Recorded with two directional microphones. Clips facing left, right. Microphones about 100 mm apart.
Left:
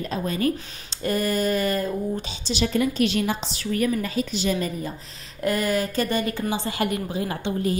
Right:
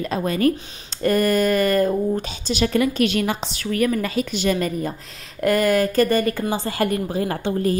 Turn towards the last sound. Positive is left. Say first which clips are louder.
# right 4 dB
turn(degrees=-45)  # may be behind; listen again after turning